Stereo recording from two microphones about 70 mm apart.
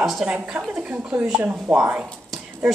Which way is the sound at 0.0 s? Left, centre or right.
Centre.